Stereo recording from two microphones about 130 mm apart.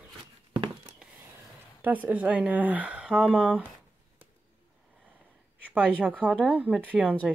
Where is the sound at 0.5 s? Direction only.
40° right (ahead or behind).